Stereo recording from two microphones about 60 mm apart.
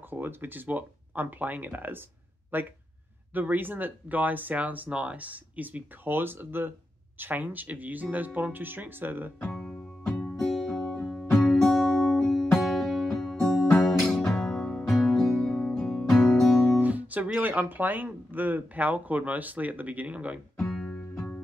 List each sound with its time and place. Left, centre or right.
0.1 s speech: right
9.7 s music: left
10.3 s music: centre
16.8 s speech: right
20.5 s music: centre